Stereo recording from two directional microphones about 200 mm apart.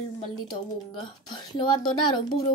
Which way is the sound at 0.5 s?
20° left (ahead or behind).